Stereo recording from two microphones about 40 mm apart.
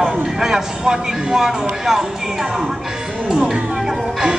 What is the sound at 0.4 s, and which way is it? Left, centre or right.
Speech, centre.